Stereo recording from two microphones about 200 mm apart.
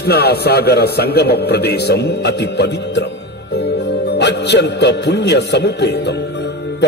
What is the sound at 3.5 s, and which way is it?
Music, 55° left (ahead or behind).